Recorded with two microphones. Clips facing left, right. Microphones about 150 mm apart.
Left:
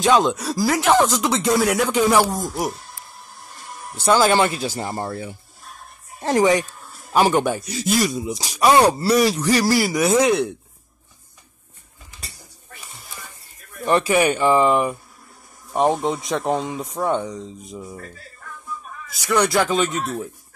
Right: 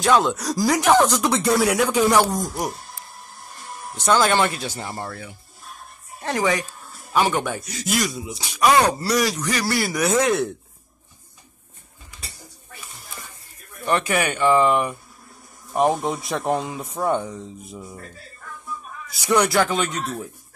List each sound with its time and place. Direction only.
0.0 s speech: 15° left (ahead or behind)
1.4 s a man's voice: 5° right (ahead or behind)
2.0 s speech: 5° left (ahead or behind)
3.9 s speech: 5° left (ahead or behind)
4.7 s speech: 30° left (ahead or behind)
10.0 s speech: centre (ahead or behind)
13.9 s speech: 30° left (ahead or behind)
14.6 s speech: centre (ahead or behind)
19.2 s a man's voice: 15° right (ahead or behind)
19.5 s speech: centre (ahead or behind)